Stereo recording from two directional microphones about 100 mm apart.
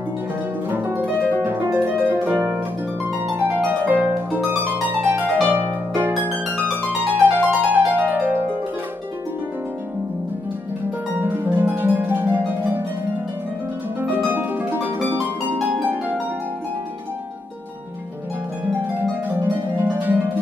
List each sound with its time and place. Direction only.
0.7 s harp: 20° right (ahead or behind)
3.2 s music: 20° right (ahead or behind)
7.9 s harp: 15° right (ahead or behind)
11.1 s harp: 20° right (ahead or behind)
14.0 s harp: 20° right (ahead or behind)
18.7 s harp: 20° right (ahead or behind)